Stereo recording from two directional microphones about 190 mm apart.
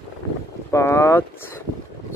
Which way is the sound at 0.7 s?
15° left (ahead or behind).